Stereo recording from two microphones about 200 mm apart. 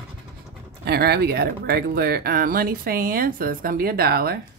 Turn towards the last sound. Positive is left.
turn(degrees=-50)  # may be behind; listen again after turning